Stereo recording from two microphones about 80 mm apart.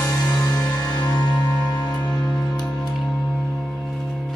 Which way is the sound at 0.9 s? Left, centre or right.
Left.